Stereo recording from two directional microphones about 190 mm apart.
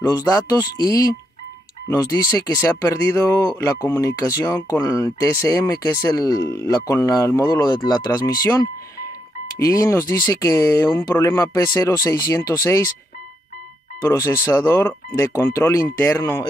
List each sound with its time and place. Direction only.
0.3 s speech: 20° left (ahead or behind)
9.6 s speech: 15° left (ahead or behind)
14.0 s speech: 15° left (ahead or behind)